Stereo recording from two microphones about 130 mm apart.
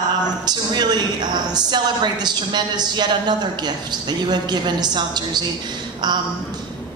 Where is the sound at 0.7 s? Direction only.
35° right (ahead or behind).